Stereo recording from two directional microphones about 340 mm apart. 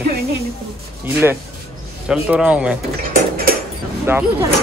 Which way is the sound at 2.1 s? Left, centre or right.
Centre.